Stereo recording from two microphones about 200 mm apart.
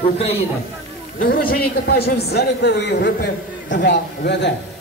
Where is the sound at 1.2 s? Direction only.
45° left (ahead or behind).